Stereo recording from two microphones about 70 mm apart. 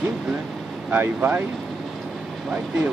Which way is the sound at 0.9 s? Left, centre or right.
Right.